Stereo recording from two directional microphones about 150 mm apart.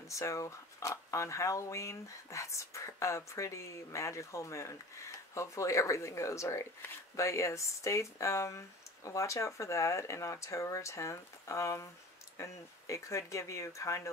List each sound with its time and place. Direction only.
0.1 s speech: 20° left (ahead or behind)